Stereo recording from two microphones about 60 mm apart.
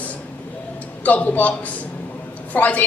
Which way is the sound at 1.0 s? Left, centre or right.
Left.